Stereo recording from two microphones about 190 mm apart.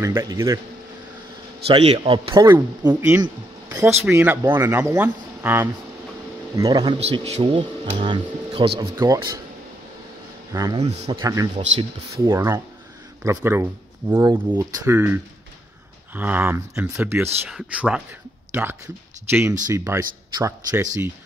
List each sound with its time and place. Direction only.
0.0 s speech: 15° right (ahead or behind)
1.7 s speech: 30° right (ahead or behind)
7.0 s speech: 35° right (ahead or behind); by 9.4 s 20° right (ahead or behind)
10.5 s speech: 15° right (ahead or behind)
16.2 s speech: 10° right (ahead or behind)